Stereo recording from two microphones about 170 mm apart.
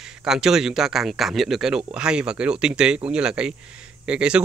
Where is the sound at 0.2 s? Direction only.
5° right (ahead or behind).